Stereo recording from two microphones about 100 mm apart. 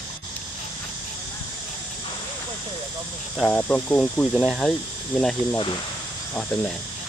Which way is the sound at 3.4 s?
15° left (ahead or behind).